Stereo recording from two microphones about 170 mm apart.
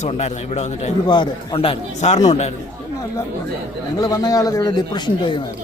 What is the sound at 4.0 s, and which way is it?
A man's voice, 20° left (ahead or behind).